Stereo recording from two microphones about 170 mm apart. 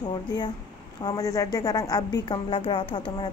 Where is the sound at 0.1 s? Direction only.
25° left (ahead or behind).